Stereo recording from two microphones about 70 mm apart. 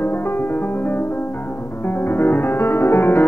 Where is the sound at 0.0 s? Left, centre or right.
Left.